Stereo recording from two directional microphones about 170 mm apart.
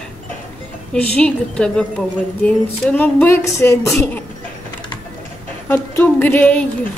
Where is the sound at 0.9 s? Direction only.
10° left (ahead or behind).